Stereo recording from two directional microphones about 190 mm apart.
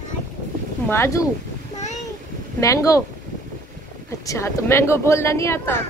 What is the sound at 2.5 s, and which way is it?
Speech, 15° left (ahead or behind).